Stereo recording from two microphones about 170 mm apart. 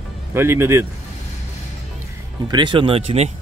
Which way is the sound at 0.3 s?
15° right (ahead or behind).